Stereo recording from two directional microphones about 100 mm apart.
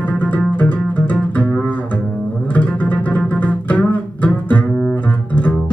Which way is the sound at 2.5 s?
15° left (ahead or behind).